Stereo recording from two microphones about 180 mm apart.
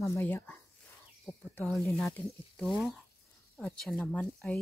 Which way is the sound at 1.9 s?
Centre (ahead or behind).